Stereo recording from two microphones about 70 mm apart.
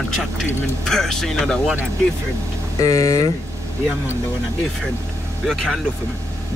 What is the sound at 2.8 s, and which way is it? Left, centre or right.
Speech, left.